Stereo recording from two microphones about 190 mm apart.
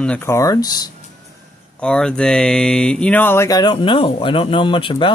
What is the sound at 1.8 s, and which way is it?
Speech, 5° left (ahead or behind).